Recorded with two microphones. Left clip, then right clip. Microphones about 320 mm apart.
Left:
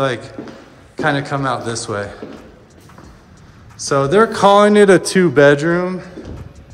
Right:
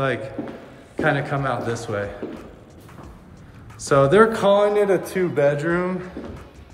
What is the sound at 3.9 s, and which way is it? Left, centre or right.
A man's voice, centre.